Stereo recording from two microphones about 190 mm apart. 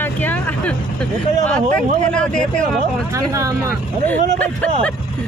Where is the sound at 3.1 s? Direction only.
15° right (ahead or behind).